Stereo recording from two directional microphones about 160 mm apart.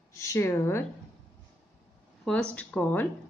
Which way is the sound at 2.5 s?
10° left (ahead or behind).